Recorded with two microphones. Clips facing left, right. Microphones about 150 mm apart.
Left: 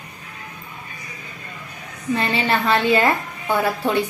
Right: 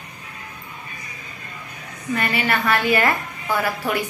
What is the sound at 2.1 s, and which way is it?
A woman's voice, 25° left (ahead or behind).